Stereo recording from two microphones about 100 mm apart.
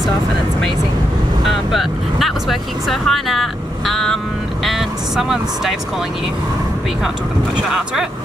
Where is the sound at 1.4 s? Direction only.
Centre (ahead or behind).